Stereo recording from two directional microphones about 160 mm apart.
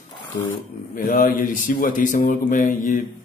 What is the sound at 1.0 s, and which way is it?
Speech, 60° left (ahead or behind).